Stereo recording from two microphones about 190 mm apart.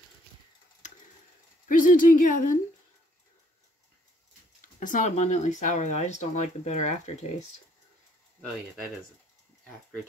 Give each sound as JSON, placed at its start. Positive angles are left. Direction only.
{"t": 1.7, "sound": "speech", "side_deg": 45}
{"t": 4.7, "sound": "speech", "side_deg": 40}